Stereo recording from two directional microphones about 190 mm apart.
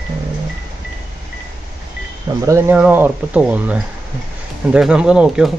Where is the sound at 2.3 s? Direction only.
15° right (ahead or behind).